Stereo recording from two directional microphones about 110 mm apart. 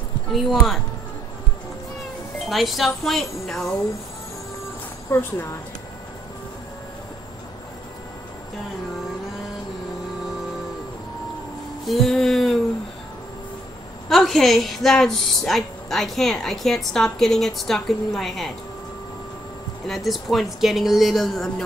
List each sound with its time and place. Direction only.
0.3 s a woman's voice: centre (ahead or behind)
2.3 s a woman's voice: centre (ahead or behind)
5.1 s speech: 20° left (ahead or behind)
11.8 s music: centre (ahead or behind)
14.0 s a woman's voice: centre (ahead or behind)
19.9 s a woman's voice: centre (ahead or behind)